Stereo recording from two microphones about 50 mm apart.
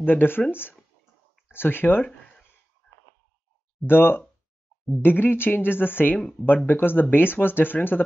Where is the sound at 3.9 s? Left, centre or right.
Left.